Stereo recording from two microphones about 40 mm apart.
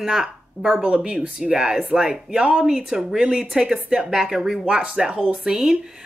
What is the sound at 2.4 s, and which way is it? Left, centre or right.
Speech, right.